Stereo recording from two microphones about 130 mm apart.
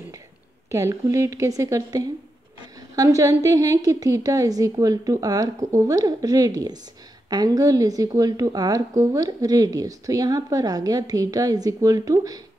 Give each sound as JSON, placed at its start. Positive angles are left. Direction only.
{"t": 0.7, "sound": "a woman's voice", "side_deg": -25}